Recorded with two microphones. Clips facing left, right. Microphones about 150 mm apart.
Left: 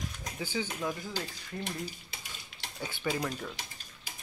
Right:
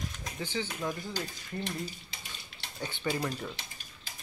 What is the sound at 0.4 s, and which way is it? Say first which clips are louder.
Speech: even; 10° left (ahead or behind).